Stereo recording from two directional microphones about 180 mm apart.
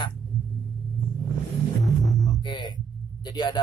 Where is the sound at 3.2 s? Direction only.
25° left (ahead or behind).